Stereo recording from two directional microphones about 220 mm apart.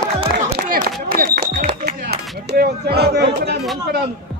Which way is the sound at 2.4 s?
45° right (ahead or behind).